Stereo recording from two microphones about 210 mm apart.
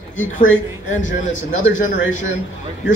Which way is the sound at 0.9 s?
35° left (ahead or behind).